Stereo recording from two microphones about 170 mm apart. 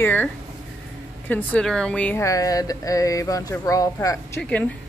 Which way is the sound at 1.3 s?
5° left (ahead or behind).